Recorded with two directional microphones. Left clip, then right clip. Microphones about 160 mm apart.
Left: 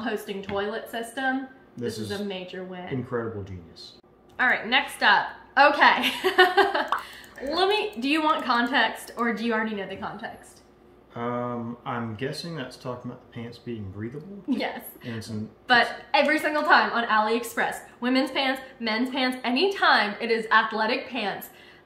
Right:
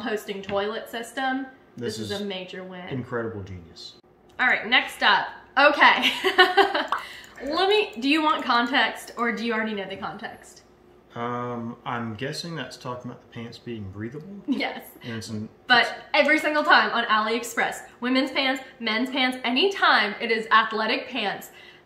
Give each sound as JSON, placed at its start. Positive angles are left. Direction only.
{"t": 0.0, "sound": "speech", "side_deg": 5}
{"t": 1.8, "sound": "speech", "side_deg": -25}
{"t": 2.0, "sound": "speech", "side_deg": 5}
{"t": 3.1, "sound": "speech", "side_deg": -25}
{"t": 4.4, "sound": "a woman's voice", "side_deg": 5}
{"t": 11.1, "sound": "speech", "side_deg": -25}
{"t": 14.5, "sound": "a woman's voice", "side_deg": 10}